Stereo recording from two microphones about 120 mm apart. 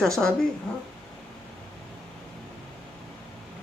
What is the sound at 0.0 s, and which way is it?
Speech, 5° left (ahead or behind).